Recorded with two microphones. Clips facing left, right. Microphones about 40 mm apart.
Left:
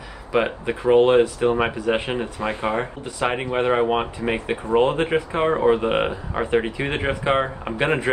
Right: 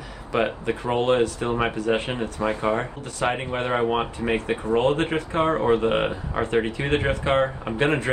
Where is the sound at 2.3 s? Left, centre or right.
Left.